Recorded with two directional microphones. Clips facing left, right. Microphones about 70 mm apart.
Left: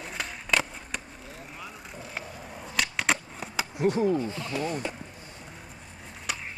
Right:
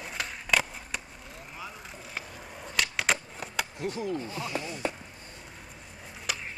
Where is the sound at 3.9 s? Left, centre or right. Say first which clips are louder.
Left 10 dB; left.